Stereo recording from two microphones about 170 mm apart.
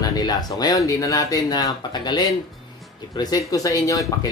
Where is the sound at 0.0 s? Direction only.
25° left (ahead or behind).